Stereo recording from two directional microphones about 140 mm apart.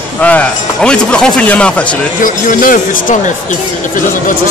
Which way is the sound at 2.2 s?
75° left (ahead or behind).